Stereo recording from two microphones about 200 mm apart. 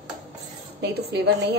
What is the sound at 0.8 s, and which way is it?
Speech, 55° right (ahead or behind).